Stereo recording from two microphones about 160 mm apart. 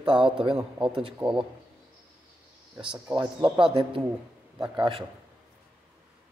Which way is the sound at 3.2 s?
30° right (ahead or behind).